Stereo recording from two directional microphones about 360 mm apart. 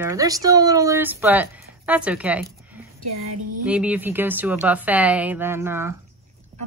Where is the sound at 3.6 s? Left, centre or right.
Centre.